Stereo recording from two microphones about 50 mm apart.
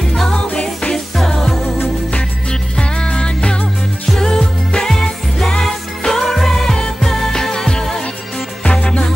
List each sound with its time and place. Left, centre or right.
0.5 s music: left
1.1 s music: centre
2.8 s music: left
8.6 s music: left